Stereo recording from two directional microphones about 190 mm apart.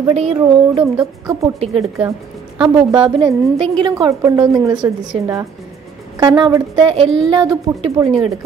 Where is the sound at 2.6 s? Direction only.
25° right (ahead or behind).